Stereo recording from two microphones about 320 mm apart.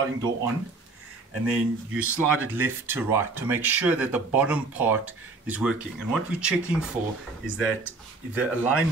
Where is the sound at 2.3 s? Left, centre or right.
Centre.